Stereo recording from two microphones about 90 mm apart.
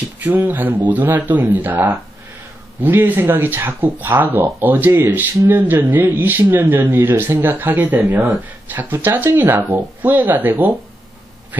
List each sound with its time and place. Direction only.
0.2 s speech: 20° right (ahead or behind)